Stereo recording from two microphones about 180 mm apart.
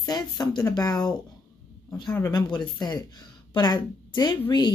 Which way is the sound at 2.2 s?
25° left (ahead or behind).